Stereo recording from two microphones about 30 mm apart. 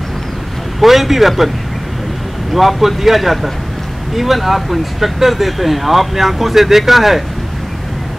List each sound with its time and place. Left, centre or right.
0.7 s speech: centre
2.5 s speech: centre